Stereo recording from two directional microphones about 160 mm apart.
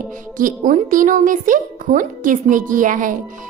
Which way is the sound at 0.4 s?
55° right (ahead or behind).